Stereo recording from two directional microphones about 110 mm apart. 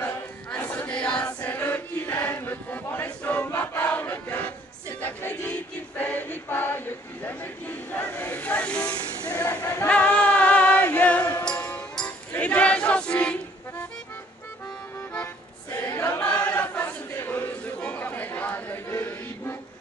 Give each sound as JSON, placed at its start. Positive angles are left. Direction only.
{"t": 0.0, "sound": "choir", "side_deg": 15}
{"t": 7.9, "sound": "a sound", "side_deg": 15}
{"t": 9.8, "sound": "music", "side_deg": 10}
{"t": 15.9, "sound": "choir", "side_deg": 30}
{"t": 16.2, "sound": "choir", "side_deg": 10}